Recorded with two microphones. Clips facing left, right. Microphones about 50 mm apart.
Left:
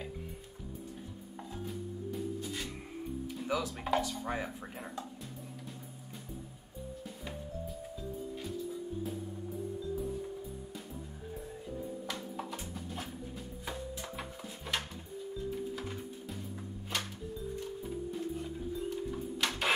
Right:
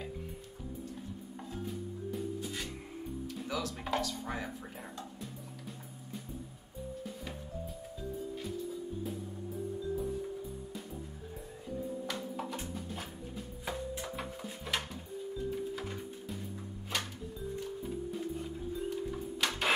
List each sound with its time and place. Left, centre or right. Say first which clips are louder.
1.7 s music: even; centre
3.4 s speech: left 4 dB; centre
12.1 s music: right 2 dB; centre
19.4 s printer: right 1 dB; centre